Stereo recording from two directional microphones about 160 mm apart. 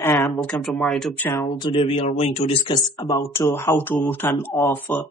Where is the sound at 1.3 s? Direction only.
30° left (ahead or behind).